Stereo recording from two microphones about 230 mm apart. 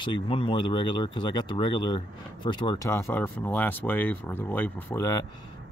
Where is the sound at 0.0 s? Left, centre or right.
Left.